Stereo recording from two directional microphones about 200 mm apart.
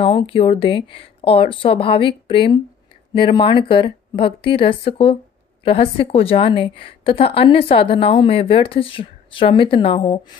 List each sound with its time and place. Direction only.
0.0 s a woman's voice: 25° left (ahead or behind)